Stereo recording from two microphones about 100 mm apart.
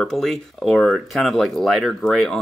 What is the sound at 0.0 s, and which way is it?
Speech, 5° left (ahead or behind).